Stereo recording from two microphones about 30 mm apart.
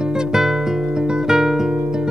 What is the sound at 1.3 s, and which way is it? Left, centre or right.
Music, centre.